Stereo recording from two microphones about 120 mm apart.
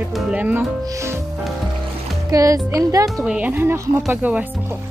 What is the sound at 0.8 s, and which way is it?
Speech, 25° right (ahead or behind).